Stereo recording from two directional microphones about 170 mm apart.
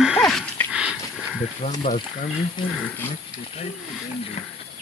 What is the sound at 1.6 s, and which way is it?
Speech, 40° left (ahead or behind).